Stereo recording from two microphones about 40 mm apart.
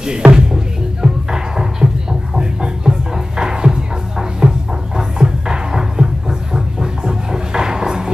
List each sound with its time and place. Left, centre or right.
0.0 s speech: centre
1.0 s music: centre